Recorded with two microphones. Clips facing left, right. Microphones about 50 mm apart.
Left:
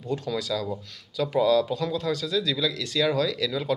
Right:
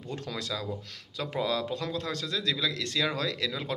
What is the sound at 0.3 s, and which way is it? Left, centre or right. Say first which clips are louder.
Speech: left 4 dB; right.